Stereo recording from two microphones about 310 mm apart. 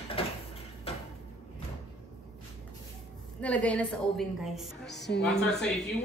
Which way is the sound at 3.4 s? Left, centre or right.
Centre.